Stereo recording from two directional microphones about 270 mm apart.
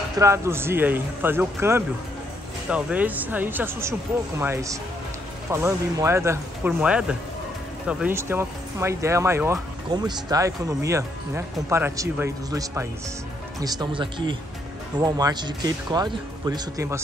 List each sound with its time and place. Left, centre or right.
0.2 s speech: centre